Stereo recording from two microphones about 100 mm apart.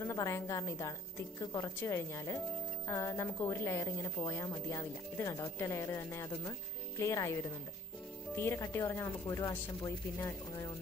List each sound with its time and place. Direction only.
0.0 s a woman's voice: 30° left (ahead or behind)
8.4 s speech: 25° left (ahead or behind)